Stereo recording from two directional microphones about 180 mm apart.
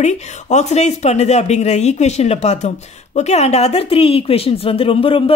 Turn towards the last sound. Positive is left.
turn(degrees=30)  # may be behind; listen again after turning